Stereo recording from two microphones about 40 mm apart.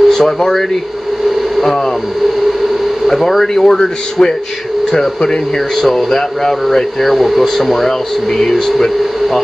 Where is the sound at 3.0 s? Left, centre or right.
Centre.